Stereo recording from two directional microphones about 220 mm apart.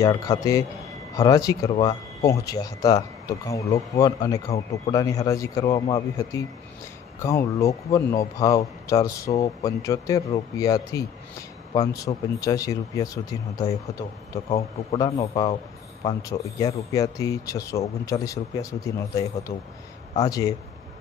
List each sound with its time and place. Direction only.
0.0 s speech: 15° left (ahead or behind)